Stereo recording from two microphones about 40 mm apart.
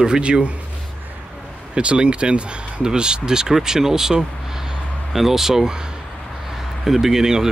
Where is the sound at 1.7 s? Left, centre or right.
Right.